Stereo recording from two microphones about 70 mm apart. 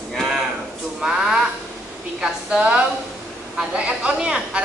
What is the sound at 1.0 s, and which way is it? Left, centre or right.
Speech, centre.